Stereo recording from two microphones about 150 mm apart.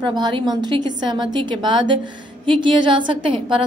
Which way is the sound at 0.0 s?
30° right (ahead or behind).